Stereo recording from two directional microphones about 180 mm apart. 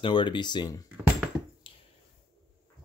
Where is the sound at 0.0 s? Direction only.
30° left (ahead or behind).